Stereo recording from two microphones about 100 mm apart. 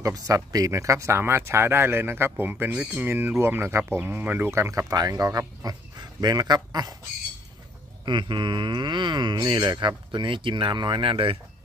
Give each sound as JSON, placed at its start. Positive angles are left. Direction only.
{"t": 0.0, "sound": "speech", "side_deg": -35}
{"t": 8.0, "sound": "speech", "side_deg": -50}